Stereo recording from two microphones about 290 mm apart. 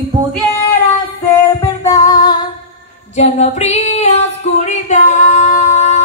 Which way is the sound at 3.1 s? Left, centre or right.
Left.